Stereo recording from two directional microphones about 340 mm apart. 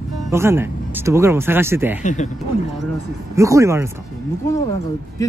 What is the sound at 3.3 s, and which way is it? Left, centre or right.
Speech, centre.